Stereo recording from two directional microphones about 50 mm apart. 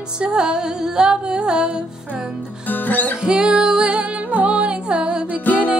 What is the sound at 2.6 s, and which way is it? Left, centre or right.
Speech, left.